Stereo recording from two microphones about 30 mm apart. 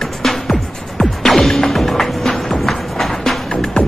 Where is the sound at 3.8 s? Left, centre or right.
Left.